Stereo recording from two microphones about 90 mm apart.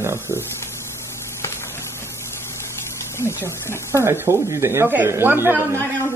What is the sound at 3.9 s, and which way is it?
Speech, 30° right (ahead or behind).